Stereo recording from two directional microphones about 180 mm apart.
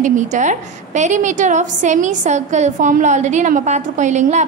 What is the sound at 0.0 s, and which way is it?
A woman's voice, 45° right (ahead or behind).